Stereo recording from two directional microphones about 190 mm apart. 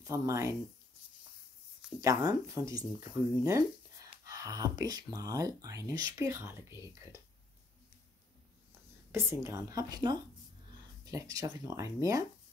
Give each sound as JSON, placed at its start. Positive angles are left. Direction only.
{"t": 0.0, "sound": "speech", "side_deg": -15}
{"t": 2.0, "sound": "speech", "side_deg": -15}
{"t": 9.1, "sound": "speech", "side_deg": -15}